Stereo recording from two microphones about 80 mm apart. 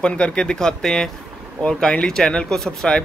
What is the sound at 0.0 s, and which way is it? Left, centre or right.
A man's voice, centre.